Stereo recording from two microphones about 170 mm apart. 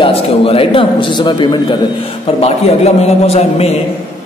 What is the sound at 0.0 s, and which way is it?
A man's voice, 35° left (ahead or behind).